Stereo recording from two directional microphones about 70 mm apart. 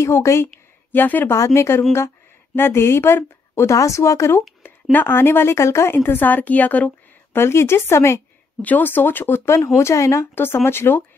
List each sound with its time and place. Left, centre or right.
0.0 s speech: left
0.9 s a woman's voice: left
1.3 s a woman's voice: left
3.7 s speech: left
4.9 s speech: left
6.0 s a woman's voice: left
7.3 s speech: left
8.6 s speech: left
10.3 s speech: left